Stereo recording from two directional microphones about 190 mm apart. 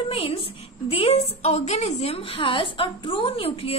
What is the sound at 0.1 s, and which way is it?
A woman's voice, 30° left (ahead or behind).